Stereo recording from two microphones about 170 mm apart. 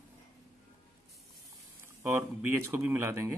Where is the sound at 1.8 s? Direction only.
15° right (ahead or behind).